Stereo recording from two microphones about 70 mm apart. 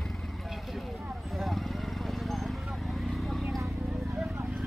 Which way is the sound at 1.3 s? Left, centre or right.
Centre.